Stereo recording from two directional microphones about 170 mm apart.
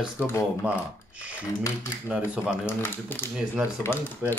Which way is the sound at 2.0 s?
5° right (ahead or behind).